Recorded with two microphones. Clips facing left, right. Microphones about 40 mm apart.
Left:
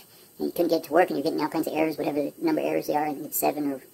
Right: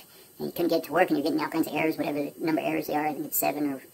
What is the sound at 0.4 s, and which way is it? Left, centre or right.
Speech, right.